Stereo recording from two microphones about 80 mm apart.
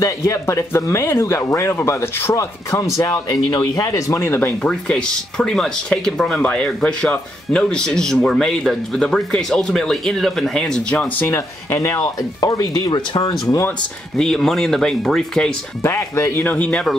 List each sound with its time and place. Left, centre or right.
0.0 s speech: left
3.3 s speech: left
4.2 s speech: left
4.6 s speech: centre
11.1 s speech: left
12.0 s speech: left
13.1 s speech: left
14.1 s speech: centre
15.8 s speech: left
16.4 s speech: centre